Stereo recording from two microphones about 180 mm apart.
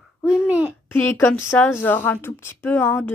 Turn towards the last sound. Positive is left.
turn(degrees=10)  # may be behind; listen again after turning